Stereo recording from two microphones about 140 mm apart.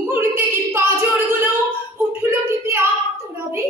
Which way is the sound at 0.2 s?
15° right (ahead or behind).